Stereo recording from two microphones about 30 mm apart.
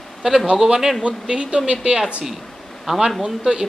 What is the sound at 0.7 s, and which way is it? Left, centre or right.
Speech, centre.